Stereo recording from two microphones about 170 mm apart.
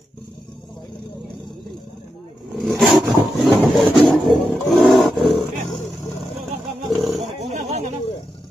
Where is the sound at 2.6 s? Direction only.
Centre (ahead or behind).